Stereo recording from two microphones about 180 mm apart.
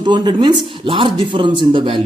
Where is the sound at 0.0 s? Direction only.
25° right (ahead or behind).